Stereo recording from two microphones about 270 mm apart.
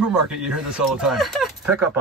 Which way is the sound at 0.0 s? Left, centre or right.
Centre.